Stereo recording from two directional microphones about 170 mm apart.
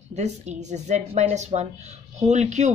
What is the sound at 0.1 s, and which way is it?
Speech, 40° right (ahead or behind).